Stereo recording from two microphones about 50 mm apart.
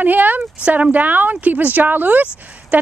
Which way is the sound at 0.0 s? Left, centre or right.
Right.